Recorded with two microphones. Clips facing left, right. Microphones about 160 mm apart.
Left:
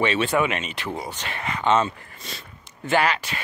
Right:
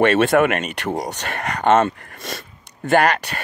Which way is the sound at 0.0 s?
50° right (ahead or behind).